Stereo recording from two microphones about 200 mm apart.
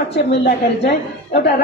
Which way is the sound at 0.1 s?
60° left (ahead or behind).